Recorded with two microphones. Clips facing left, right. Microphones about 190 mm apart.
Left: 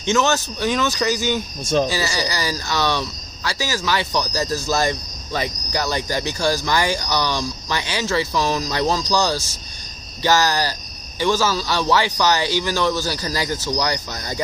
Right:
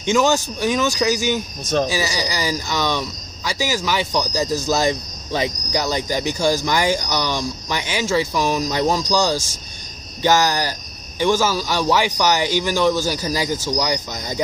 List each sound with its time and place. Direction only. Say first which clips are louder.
0.0 s speech: right 2 dB; 15° right (ahead or behind)
1.6 s speech: left 2 dB; 10° left (ahead or behind)
1.9 s speech: even; 15° right (ahead or behind)